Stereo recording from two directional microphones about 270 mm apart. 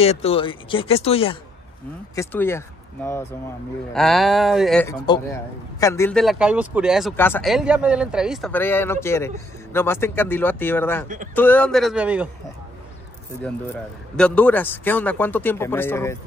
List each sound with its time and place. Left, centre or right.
0.0 s speech: left
2.1 s a man's voice: centre
5.0 s a man's voice: centre
14.1 s a man's voice: centre